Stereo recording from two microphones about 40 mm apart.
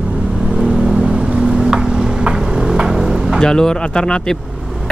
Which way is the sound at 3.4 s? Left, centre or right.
Centre.